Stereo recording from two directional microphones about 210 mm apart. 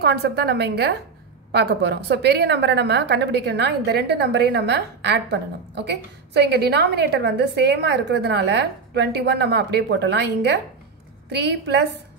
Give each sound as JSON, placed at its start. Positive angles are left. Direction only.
{"t": 0.0, "sound": "a woman's voice", "side_deg": -50}